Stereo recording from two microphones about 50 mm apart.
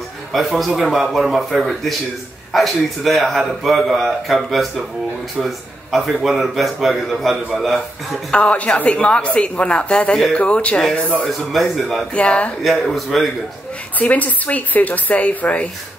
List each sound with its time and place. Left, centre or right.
0.3 s a man's voice: centre
8.3 s speech: left
11.2 s a man's voice: centre
12.1 s speech: left
12.6 s a man's voice: centre
13.9 s speech: left